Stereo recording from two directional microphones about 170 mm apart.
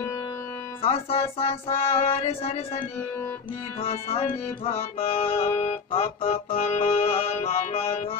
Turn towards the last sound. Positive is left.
turn(degrees=35)  # may be behind; listen again after turning